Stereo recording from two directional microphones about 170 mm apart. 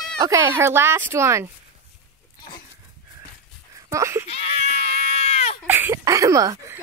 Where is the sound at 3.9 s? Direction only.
15° right (ahead or behind).